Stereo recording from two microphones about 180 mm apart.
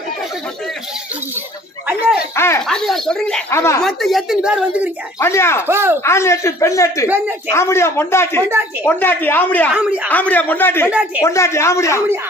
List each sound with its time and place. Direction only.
1.9 s a sound: 10° right (ahead or behind)
2.3 s a sound: 15° left (ahead or behind)
2.6 s a woman's voice: 5° left (ahead or behind)
3.5 s speech: 15° left (ahead or behind)
3.8 s a woman's voice: centre (ahead or behind)
5.2 s speech: 15° left (ahead or behind)
5.7 s speech: 15° right (ahead or behind)
6.0 s speech: 15° left (ahead or behind)
9.8 s speech: 5° right (ahead or behind)
10.0 s speech: 10° left (ahead or behind)
10.9 s speech: 5° right (ahead or behind)
11.2 s speech: 15° left (ahead or behind)